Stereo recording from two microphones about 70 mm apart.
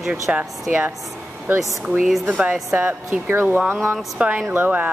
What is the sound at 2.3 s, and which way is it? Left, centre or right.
Speech, centre.